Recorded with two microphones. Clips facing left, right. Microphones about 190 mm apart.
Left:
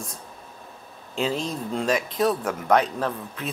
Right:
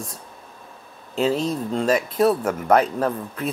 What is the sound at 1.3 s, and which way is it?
Speech, centre (ahead or behind).